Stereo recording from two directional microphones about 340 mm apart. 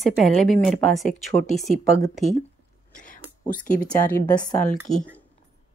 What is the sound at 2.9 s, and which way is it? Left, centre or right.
Whispering, left.